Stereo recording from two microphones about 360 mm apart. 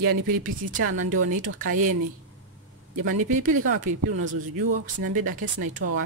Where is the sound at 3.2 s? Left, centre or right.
Right.